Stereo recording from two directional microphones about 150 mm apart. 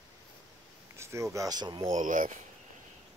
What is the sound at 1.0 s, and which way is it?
Speech, 20° right (ahead or behind).